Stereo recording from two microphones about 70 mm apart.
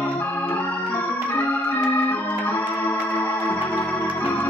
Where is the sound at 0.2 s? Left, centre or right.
Left.